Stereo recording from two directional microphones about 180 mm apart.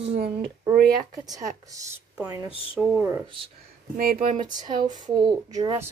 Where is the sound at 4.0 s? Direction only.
55° right (ahead or behind).